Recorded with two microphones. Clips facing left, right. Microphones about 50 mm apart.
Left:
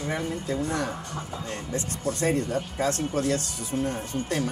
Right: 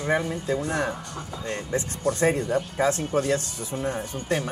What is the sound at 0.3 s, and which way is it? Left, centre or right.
Speech, right.